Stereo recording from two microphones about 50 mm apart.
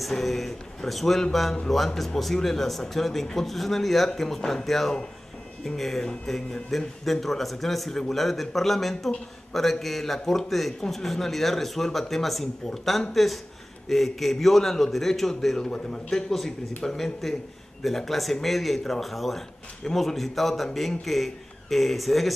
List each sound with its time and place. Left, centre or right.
0.2 s a man's voice: centre
4.4 s speech: centre
4.6 s a man's voice: centre